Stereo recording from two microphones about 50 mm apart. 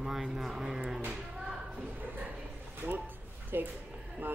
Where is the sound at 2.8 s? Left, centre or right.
Right.